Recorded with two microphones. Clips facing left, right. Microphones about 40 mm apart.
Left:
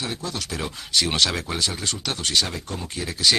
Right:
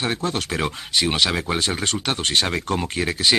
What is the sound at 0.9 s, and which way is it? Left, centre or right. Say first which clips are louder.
Speech: right 1 dB; centre.